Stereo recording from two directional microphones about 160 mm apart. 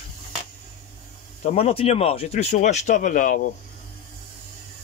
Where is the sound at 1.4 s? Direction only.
40° left (ahead or behind); by 3.4 s 55° left (ahead or behind).